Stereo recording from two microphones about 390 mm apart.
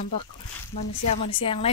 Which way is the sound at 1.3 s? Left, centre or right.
Centre.